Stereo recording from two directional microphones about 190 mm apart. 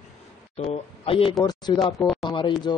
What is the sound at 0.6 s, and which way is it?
Speech, 30° left (ahead or behind).